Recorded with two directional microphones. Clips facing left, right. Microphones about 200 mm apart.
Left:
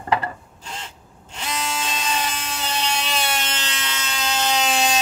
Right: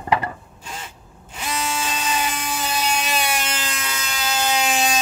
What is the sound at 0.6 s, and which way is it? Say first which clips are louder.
Drill: even; 5° right (ahead or behind).